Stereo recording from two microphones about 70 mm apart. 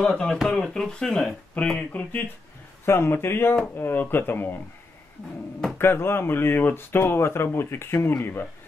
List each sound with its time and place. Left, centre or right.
0.0 s speech: centre
2.8 s speech: left
5.8 s speech: left